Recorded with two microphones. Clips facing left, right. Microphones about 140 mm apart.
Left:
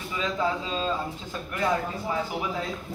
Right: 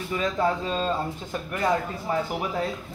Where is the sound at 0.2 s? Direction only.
45° right (ahead or behind).